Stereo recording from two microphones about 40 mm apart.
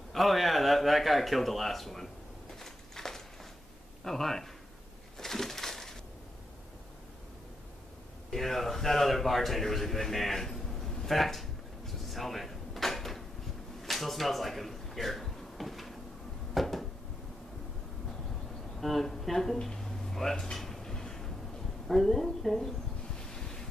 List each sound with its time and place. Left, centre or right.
0.1 s speech: centre
2.6 s a sound: centre
4.0 s speech: centre
5.1 s a sound: centre
8.3 s a man's voice: centre
13.8 s a sound: centre
16.5 s cupboard open or close: centre
18.8 s speech: centre
19.0 s drawer open or close: centre
21.8 s speech: centre
23.1 s wind: centre